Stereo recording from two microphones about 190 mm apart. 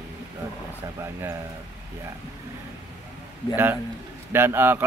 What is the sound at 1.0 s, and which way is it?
Speech, 15° right (ahead or behind).